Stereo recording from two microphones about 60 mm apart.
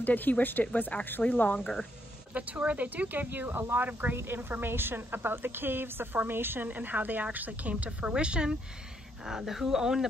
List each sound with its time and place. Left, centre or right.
0.0 s speech: left
2.3 s a woman's voice: right